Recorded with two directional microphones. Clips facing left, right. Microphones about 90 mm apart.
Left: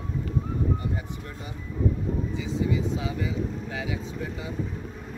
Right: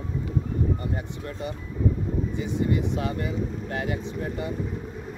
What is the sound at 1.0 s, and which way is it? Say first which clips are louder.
Speech: right 4 dB; 55° right (ahead or behind).